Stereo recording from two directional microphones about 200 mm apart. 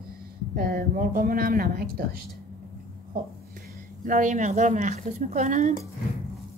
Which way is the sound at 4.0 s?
40° right (ahead or behind).